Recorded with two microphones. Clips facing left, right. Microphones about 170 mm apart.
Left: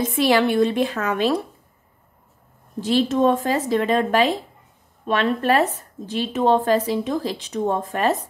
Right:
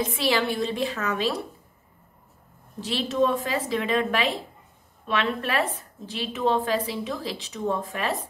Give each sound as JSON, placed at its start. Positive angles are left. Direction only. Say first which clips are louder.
{"t": 0.0, "sound": "a woman's voice", "louder": "left 6 dB", "side_deg": 50}
{"t": 2.8, "sound": "a woman's voice", "louder": "left 6 dB", "side_deg": 50}